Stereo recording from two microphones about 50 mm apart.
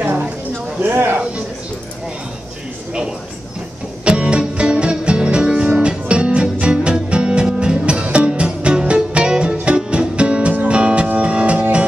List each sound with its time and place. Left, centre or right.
0.0 s a sound: right
0.7 s a man's voice: right
2.9 s speech: centre
4.0 s music: right